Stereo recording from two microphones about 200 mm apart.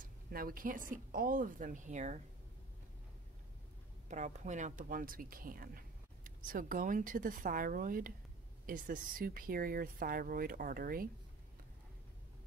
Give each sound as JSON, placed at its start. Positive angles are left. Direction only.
{"t": 0.0, "sound": "speech", "side_deg": -45}
{"t": 4.1, "sound": "speech", "side_deg": -35}